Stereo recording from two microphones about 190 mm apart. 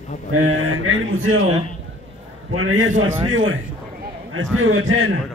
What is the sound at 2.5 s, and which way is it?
Speech, 90° right.